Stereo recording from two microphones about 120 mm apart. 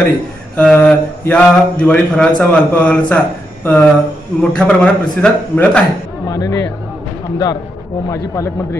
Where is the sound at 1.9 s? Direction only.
10° left (ahead or behind).